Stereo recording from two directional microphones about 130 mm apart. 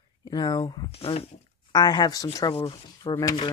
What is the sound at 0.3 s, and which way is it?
Speech, 35° left (ahead or behind).